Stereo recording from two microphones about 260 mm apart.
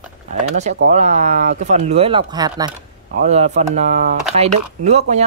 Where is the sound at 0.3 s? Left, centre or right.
Right.